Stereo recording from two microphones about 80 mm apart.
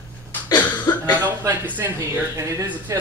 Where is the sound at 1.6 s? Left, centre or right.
Right.